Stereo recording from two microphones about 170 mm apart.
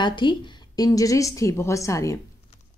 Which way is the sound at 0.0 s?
30° left (ahead or behind).